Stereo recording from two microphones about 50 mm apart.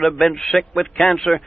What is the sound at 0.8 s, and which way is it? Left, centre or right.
Speech, left.